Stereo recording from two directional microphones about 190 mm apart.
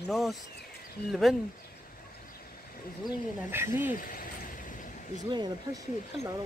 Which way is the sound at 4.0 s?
45° left (ahead or behind).